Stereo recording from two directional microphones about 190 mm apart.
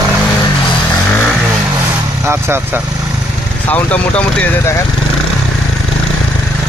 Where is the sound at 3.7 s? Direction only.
5° left (ahead or behind).